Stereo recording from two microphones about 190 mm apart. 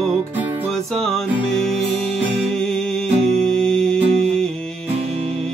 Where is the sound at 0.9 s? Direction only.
Centre (ahead or behind).